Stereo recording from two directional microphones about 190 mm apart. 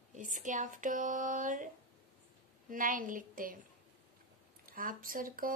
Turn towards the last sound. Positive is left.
turn(degrees=-45)  # may be behind; listen again after turning